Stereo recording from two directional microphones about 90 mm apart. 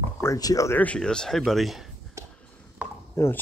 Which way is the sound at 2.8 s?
15° right (ahead or behind).